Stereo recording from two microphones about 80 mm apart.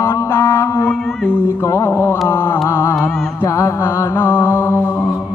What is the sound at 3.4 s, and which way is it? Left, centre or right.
Mantra, left.